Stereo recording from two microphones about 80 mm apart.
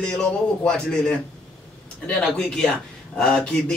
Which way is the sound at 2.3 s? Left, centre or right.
Centre.